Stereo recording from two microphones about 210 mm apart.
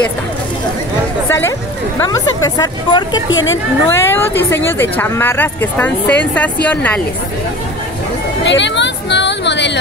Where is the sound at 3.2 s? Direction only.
65° left (ahead or behind).